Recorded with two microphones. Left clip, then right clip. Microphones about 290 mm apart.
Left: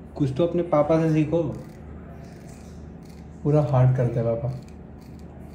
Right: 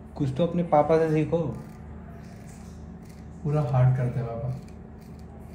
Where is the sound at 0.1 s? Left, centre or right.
Centre.